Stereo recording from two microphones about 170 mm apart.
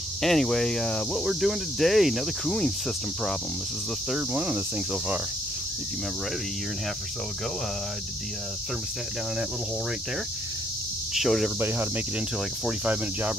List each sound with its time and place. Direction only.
0.2 s speech: centre (ahead or behind)
4.1 s speech: 10° right (ahead or behind)
11.1 s speech: centre (ahead or behind)
12.6 s speech: 10° right (ahead or behind)